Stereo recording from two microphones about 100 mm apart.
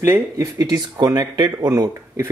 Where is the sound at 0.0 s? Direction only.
25° right (ahead or behind).